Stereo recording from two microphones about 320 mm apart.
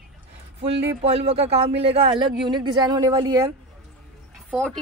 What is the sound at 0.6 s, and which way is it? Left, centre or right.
A man's voice, centre.